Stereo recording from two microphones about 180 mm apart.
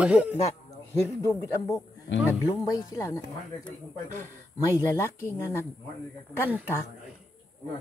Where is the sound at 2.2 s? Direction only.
20° left (ahead or behind).